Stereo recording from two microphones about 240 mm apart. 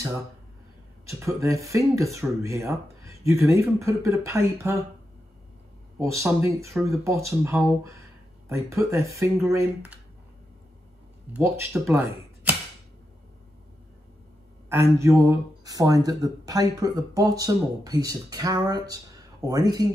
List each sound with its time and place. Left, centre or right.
1.0 s speech: centre
5.9 s speech: centre
11.3 s speech: centre
14.7 s speech: centre